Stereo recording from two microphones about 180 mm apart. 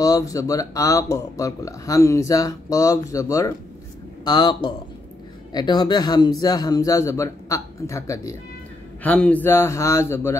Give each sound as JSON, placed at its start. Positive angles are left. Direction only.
{"t": 0.0, "sound": "speech", "side_deg": 20}